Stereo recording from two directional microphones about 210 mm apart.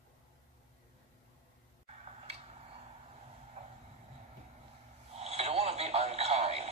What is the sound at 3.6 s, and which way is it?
Vehicle, 30° right (ahead or behind).